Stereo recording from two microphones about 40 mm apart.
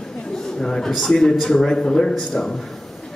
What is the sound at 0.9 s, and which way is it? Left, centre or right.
A man's voice, centre.